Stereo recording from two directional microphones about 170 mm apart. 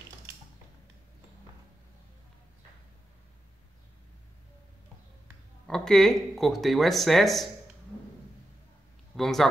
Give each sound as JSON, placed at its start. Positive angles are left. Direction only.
{"t": 5.7, "sound": "speech", "side_deg": 0}
{"t": 9.1, "sound": "speech", "side_deg": 0}